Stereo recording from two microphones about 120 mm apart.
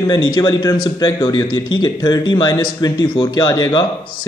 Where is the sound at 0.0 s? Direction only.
35° left (ahead or behind).